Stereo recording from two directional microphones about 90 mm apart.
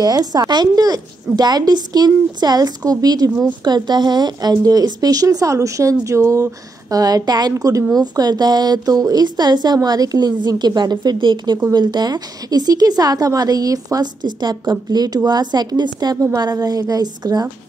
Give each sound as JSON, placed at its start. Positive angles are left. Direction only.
{"t": 0.0, "sound": "a woman's voice", "side_deg": -45}